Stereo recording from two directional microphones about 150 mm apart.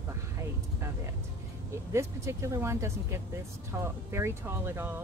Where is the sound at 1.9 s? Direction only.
20° right (ahead or behind).